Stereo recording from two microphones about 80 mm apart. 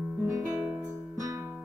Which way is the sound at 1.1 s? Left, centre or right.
Right.